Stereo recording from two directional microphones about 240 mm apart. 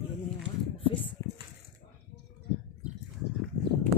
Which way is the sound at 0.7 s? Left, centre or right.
Left.